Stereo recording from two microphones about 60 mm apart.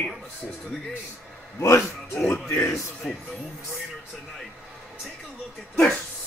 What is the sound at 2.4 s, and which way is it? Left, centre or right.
Speech, left.